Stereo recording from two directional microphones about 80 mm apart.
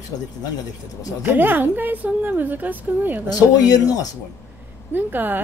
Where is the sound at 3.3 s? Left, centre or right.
Left.